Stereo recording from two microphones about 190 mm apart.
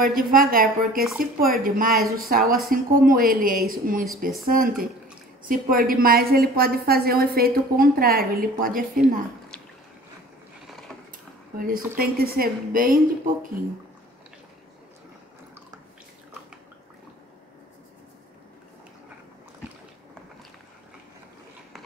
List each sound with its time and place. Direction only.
0.0 s a woman's voice: 45° right (ahead or behind)
11.6 s a woman's voice: 50° right (ahead or behind)